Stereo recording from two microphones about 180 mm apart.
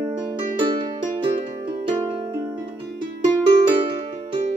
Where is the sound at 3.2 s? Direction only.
30° right (ahead or behind).